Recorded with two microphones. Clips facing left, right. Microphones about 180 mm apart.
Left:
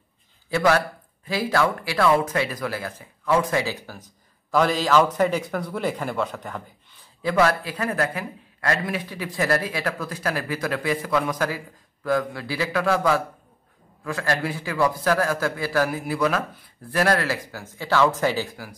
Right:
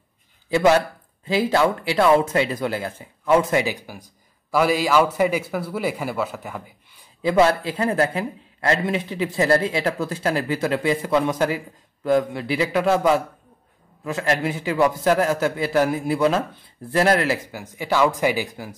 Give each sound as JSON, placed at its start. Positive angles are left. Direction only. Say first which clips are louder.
{"t": 0.5, "sound": "speech", "louder": "right 3 dB", "side_deg": -20}
{"t": 7.2, "sound": "a man's voice", "louder": "right 3 dB", "side_deg": -20}